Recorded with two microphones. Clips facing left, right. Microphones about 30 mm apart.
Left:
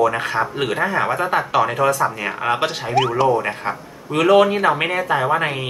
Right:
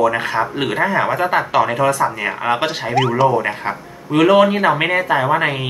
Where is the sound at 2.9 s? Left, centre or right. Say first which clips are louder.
Right 1 dB; centre.